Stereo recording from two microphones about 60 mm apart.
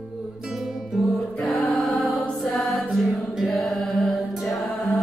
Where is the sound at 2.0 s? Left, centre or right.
Centre.